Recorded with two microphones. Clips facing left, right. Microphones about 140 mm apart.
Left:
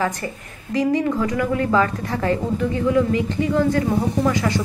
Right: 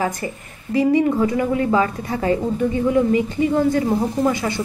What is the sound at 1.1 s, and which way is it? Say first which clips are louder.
A woman's voice: right 2 dB; 25° right (ahead or behind).